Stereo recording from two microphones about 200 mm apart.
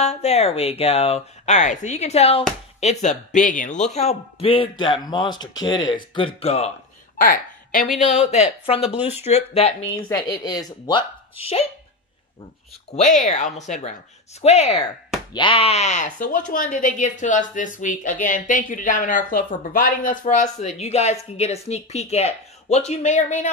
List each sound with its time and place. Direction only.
0.0 s speech: 35° left (ahead or behind)
7.2 s a woman's voice: 45° left (ahead or behind)
10.0 s speech: 20° left (ahead or behind)
12.9 s speech: 35° left (ahead or behind)